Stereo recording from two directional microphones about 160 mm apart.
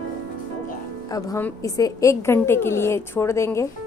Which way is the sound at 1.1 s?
20° left (ahead or behind).